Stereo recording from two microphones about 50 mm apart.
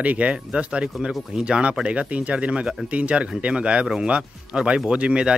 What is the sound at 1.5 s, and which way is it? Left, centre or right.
Speech, right.